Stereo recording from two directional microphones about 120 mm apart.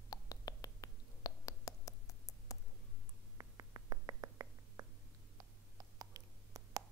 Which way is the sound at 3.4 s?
30° right (ahead or behind).